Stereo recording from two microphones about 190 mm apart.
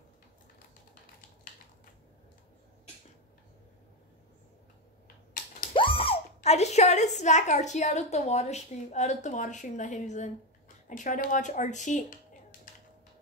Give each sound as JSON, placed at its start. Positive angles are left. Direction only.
{"t": 5.7, "sound": "speech", "side_deg": 30}